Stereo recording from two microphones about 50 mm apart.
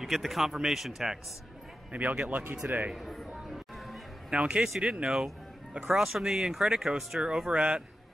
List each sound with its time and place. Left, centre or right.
0.0 s speech: centre
1.9 s speech: right
2.9 s a sound: centre
4.3 s speech: right
4.6 s speech: centre
7.5 s speech: right